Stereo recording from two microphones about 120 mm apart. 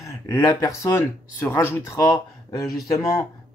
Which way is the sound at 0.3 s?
25° left (ahead or behind).